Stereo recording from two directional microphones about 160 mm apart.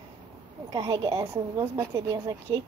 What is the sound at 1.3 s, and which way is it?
Speech, 20° right (ahead or behind).